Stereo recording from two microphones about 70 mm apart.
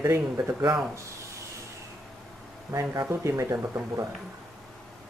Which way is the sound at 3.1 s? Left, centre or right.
Right.